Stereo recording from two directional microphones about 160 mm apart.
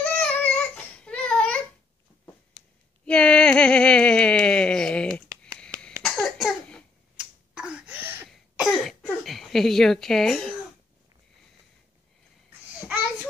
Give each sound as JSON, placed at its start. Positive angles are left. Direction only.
{"t": 0.0, "sound": "child singing", "side_deg": 5}
{"t": 3.1, "sound": "a sound", "side_deg": 5}
{"t": 8.3, "sound": "cough", "side_deg": 0}